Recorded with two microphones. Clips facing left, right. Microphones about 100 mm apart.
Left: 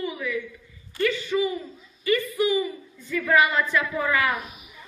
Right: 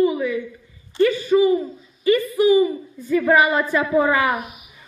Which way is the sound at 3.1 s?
30° right (ahead or behind).